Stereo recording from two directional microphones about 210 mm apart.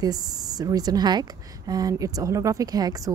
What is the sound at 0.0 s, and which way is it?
A woman's voice, 15° right (ahead or behind).